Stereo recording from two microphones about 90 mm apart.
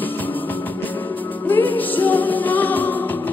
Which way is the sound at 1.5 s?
20° left (ahead or behind).